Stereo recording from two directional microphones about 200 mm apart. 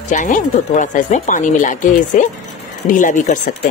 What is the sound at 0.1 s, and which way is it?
Speech, 40° left (ahead or behind).